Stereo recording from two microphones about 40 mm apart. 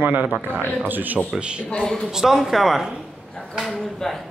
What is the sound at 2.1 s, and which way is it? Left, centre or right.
Speech, centre.